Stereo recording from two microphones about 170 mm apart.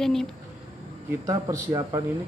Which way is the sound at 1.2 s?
20° right (ahead or behind).